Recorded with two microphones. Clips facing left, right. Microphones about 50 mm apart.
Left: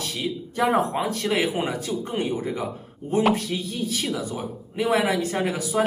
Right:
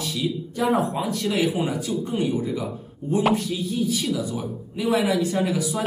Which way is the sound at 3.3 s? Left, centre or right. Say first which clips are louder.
Right 3 dB; left.